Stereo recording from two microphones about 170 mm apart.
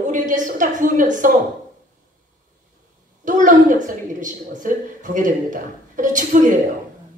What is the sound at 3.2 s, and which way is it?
A woman's voice, 50° right (ahead or behind).